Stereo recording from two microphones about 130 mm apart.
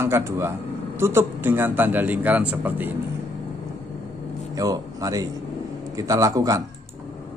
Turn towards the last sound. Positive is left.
turn(degrees=-25)  # may be behind; listen again after turning